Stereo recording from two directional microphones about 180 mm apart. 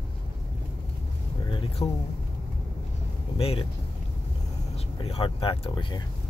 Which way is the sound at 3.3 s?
30° left (ahead or behind).